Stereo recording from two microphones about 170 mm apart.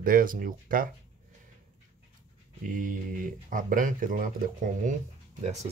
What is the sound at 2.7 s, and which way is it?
Speech, 50° right (ahead or behind).